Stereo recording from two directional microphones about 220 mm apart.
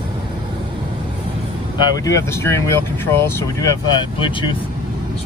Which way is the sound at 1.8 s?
15° left (ahead or behind).